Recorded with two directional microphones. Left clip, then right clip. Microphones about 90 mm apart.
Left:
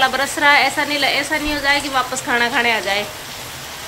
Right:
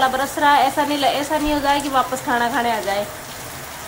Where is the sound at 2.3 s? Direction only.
15° right (ahead or behind).